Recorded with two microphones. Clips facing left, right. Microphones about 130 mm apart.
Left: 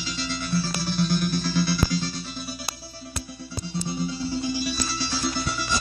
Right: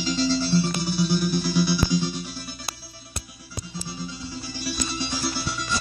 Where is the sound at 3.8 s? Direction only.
30° left (ahead or behind).